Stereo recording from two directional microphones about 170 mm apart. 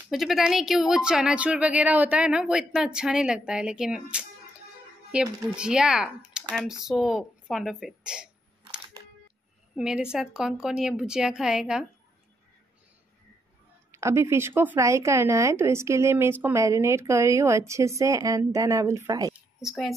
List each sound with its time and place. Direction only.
0.1 s speech: centre (ahead or behind)
9.8 s speech: 5° right (ahead or behind)
13.9 s speech: 15° right (ahead or behind)
19.6 s speech: centre (ahead or behind)